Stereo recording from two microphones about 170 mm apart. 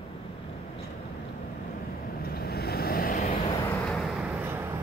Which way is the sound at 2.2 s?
65° left (ahead or behind).